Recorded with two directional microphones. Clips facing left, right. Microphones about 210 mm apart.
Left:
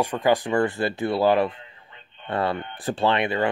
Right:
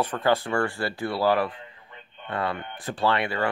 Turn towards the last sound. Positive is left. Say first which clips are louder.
# left 3 dB
turn(degrees=20)  # may be behind; listen again after turning